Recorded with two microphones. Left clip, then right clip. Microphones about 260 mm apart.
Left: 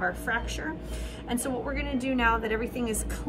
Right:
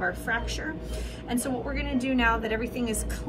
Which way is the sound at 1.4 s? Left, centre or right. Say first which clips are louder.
Left 1 dB; centre.